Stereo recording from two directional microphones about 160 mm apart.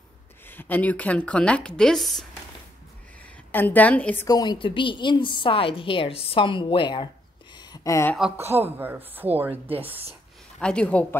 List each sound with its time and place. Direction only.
0.5 s a woman's voice: 10° left (ahead or behind)
3.5 s a woman's voice: 10° left (ahead or behind)
4.3 s a woman's voice: 25° left (ahead or behind)
7.5 s a sound: 25° left (ahead or behind)
8.5 s speech: 15° right (ahead or behind)
10.6 s a woman's voice: 5° left (ahead or behind)